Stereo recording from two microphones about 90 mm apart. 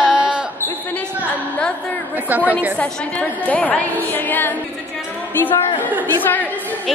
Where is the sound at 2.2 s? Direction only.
15° right (ahead or behind).